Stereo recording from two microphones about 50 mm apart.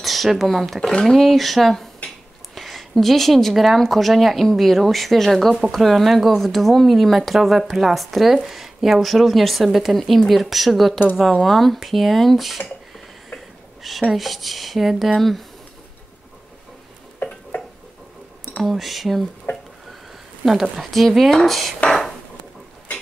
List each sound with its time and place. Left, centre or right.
0.0 s speech: centre
14.1 s speech: centre
18.6 s speech: centre
19.5 s speech: left
20.7 s speech: centre